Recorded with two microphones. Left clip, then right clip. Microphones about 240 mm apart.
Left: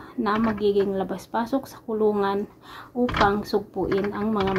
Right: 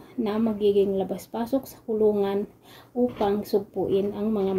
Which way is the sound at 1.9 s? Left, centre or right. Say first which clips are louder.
Right 1 dB; left.